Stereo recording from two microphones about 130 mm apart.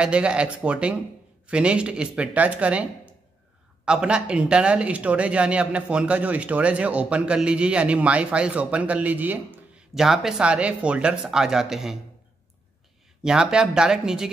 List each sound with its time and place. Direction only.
0.0 s speech: 10° right (ahead or behind)
13.2 s speech: 5° right (ahead or behind)